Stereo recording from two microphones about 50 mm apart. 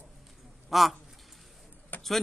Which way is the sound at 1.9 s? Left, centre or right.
Left.